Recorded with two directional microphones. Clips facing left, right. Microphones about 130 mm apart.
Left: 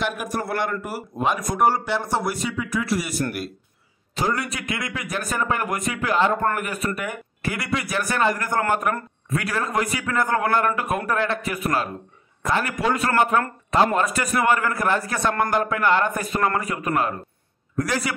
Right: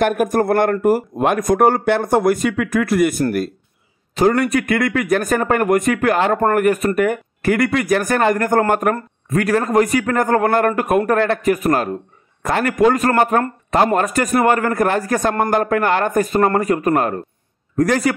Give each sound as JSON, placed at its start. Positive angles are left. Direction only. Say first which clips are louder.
{"t": 0.0, "sound": "speech", "louder": "right 10 dB", "side_deg": -50}